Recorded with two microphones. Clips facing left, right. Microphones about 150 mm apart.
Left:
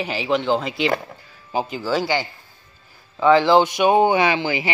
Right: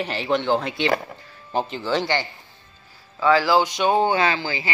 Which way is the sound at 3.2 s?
20° left (ahead or behind).